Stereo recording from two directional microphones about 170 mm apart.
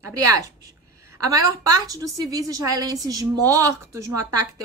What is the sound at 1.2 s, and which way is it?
A woman's voice, 20° right (ahead or behind).